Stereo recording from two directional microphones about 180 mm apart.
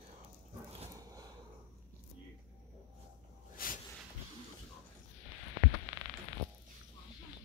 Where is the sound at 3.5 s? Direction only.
50° left (ahead or behind).